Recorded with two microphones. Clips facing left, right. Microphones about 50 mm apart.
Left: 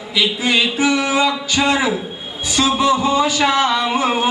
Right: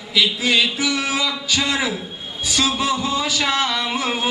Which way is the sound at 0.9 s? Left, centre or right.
Centre.